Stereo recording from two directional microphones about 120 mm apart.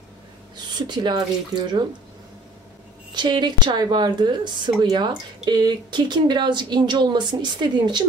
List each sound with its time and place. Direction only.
0.7 s speech: 40° right (ahead or behind)
3.1 s speech: 40° right (ahead or behind)